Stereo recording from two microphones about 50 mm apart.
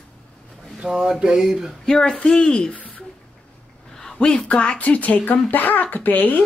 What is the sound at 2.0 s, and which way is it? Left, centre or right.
Speech, centre.